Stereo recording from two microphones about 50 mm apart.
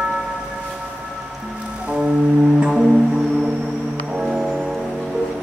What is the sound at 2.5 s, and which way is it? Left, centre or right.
Music, centre.